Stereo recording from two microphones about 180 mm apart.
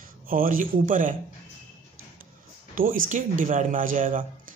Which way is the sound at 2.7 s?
50° right (ahead or behind).